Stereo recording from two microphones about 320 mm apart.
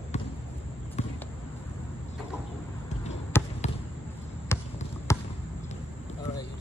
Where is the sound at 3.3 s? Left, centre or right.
Centre.